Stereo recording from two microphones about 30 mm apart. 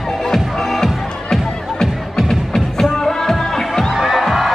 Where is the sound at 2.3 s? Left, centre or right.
Centre.